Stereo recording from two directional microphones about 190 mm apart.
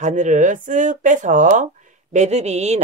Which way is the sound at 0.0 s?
40° right (ahead or behind).